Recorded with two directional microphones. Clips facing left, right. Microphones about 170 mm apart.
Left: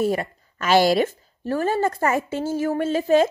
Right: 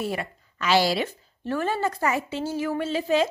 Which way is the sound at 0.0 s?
40° left (ahead or behind).